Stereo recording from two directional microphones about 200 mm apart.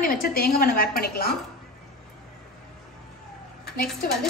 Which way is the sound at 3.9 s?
Centre (ahead or behind).